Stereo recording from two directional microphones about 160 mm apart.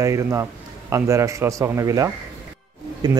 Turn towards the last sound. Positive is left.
turn(degrees=-25)  # may be behind; listen again after turning